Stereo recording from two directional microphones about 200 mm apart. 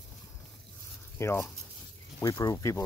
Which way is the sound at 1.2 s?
10° left (ahead or behind).